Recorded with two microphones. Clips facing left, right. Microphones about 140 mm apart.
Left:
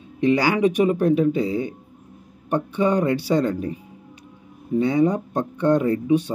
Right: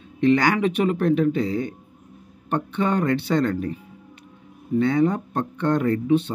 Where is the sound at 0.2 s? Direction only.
15° left (ahead or behind).